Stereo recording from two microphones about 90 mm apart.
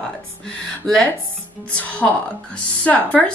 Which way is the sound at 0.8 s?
10° left (ahead or behind).